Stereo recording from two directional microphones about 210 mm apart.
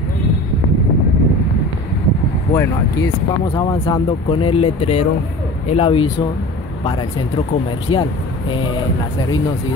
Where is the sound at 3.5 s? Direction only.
25° left (ahead or behind).